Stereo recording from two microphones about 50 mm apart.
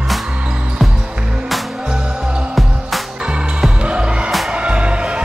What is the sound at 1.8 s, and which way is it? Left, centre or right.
Music, centre.